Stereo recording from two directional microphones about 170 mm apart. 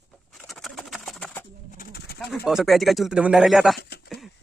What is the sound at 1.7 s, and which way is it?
Bird, 70° left (ahead or behind).